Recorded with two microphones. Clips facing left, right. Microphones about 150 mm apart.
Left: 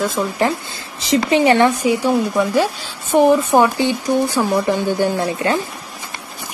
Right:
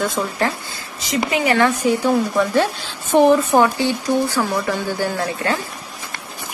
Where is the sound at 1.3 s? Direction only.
25° left (ahead or behind).